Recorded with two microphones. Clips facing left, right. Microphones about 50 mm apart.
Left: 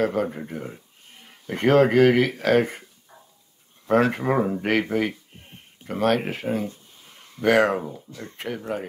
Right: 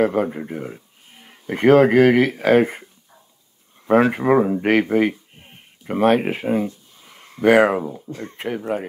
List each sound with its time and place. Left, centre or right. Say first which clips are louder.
0.0 s speech: right 4 dB; centre
7.1 s a sound: right 5 dB; right
7.4 s speech: right 5 dB; centre
8.1 s speech: right 7 dB; right
8.4 s speech: right 5 dB; centre